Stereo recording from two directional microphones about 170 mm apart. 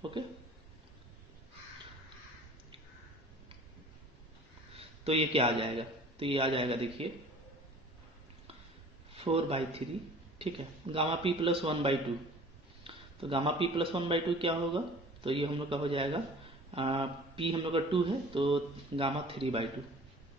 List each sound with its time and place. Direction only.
0.2 s a sound: 30° right (ahead or behind)
5.0 s speech: 35° right (ahead or behind)
9.1 s speech: 35° right (ahead or behind)